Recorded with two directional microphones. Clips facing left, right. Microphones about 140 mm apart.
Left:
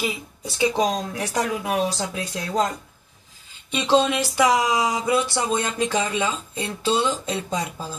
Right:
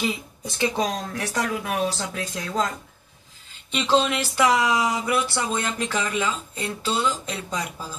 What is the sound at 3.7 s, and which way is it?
Speech, 15° left (ahead or behind).